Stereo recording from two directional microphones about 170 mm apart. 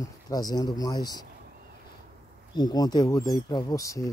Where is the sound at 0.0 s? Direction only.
20° left (ahead or behind).